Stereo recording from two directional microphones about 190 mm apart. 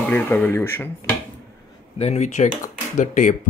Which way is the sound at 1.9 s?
35° left (ahead or behind).